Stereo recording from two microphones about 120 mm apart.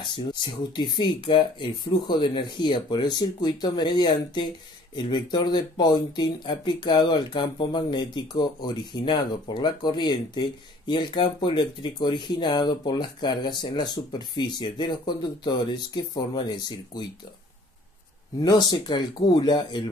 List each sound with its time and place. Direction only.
0.0 s speech: 40° left (ahead or behind)
18.4 s speech: 35° left (ahead or behind)